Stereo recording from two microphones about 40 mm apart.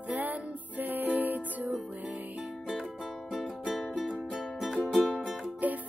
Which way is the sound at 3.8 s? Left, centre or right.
Centre.